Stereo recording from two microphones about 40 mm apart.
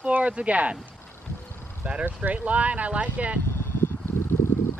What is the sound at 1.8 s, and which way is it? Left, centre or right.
Speech, right.